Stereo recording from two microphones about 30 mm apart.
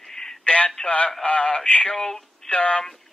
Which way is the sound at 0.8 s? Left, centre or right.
Left.